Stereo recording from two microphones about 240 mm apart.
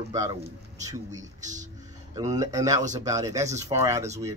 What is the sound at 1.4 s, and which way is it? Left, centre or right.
Speech, right.